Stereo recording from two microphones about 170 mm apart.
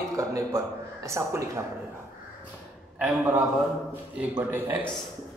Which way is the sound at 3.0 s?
10° right (ahead or behind).